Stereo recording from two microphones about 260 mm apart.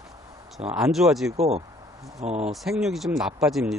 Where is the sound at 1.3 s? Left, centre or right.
Right.